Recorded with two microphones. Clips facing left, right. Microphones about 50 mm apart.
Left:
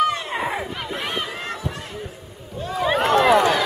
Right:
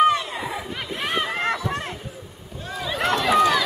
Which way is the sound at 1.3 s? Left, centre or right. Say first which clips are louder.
Right 6 dB; right.